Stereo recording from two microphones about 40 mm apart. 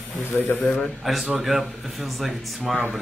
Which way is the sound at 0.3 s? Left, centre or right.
Left.